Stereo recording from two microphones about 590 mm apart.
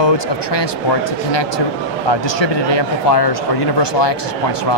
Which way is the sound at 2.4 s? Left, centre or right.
Left.